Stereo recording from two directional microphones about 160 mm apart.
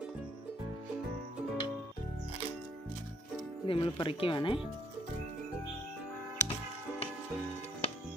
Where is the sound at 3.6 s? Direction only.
35° left (ahead or behind).